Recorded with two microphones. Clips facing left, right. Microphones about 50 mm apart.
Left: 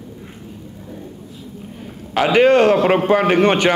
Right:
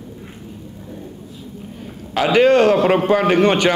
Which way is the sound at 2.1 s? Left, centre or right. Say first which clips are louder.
Left 1 dB; left.